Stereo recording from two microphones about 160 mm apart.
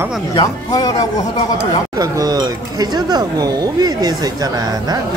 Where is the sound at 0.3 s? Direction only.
25° left (ahead or behind).